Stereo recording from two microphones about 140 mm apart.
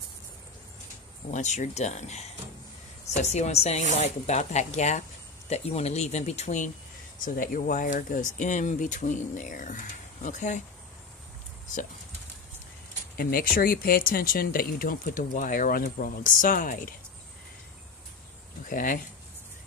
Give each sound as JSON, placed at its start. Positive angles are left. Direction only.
{"t": 1.3, "sound": "speech", "side_deg": 60}
{"t": 7.2, "sound": "speech", "side_deg": 85}
{"t": 13.2, "sound": "speech", "side_deg": 90}
{"t": 18.7, "sound": "speech", "side_deg": 75}